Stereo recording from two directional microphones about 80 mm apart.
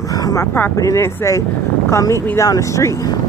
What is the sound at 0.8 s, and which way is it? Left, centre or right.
Speech, left.